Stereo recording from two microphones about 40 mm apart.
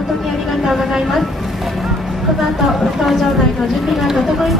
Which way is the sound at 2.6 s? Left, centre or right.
Centre.